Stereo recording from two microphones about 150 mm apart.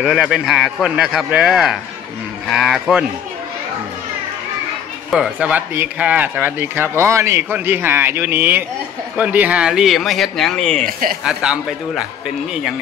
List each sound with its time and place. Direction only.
0.0 s speech: 5° right (ahead or behind)
5.1 s speech: 5° right (ahead or behind)
10.9 s speech: 70° right (ahead or behind)
11.2 s speech: 5° right (ahead or behind)